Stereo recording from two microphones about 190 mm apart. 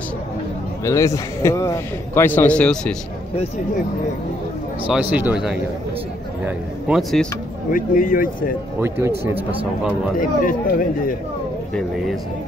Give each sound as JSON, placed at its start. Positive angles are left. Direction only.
{"t": 0.8, "sound": "a man's voice", "side_deg": 15}
{"t": 5.1, "sound": "speech", "side_deg": -5}
{"t": 7.7, "sound": "speech", "side_deg": 45}
{"t": 10.1, "sound": "speech", "side_deg": 45}